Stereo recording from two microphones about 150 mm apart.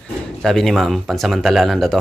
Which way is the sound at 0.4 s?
Centre (ahead or behind).